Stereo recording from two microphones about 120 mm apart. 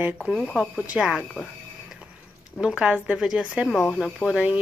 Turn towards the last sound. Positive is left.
turn(degrees=-10)  # may be behind; listen again after turning